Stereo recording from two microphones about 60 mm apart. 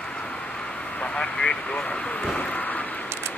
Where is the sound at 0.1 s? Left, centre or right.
Centre.